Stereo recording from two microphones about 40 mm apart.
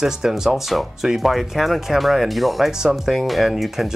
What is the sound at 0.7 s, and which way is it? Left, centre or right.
Speech, centre.